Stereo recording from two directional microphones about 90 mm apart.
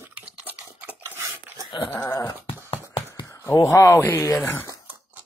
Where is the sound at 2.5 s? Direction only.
90° left.